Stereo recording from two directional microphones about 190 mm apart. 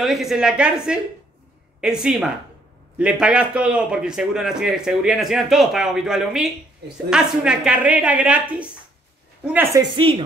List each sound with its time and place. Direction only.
0.0 s a man's voice: centre (ahead or behind); by 10.2 s 25° right (ahead or behind)